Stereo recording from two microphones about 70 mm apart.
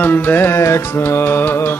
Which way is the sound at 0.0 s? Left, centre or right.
Left.